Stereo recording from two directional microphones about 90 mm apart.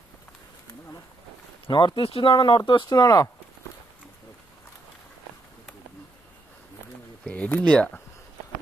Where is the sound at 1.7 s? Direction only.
60° left (ahead or behind).